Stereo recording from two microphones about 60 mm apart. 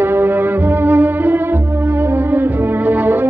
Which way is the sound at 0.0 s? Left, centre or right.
Right.